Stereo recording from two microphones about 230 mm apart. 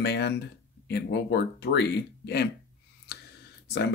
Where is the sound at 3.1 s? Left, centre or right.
Left.